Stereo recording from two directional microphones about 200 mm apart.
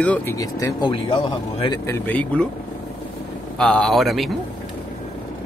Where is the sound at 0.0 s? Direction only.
5° left (ahead or behind).